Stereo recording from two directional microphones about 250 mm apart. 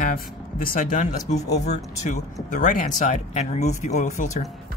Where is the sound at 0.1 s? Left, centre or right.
Left.